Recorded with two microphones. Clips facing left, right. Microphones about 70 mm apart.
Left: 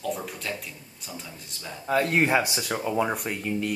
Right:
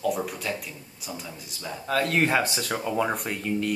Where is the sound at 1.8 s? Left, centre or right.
Left.